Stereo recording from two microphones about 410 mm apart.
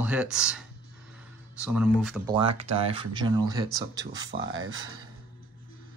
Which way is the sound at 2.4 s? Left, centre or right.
Centre.